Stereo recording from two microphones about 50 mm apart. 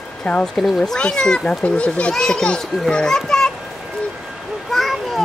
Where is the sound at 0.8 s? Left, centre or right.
Centre.